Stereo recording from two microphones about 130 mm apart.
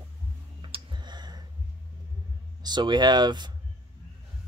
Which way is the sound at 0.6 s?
40° right (ahead or behind).